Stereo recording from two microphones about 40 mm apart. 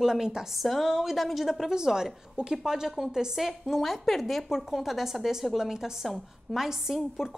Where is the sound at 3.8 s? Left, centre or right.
Centre.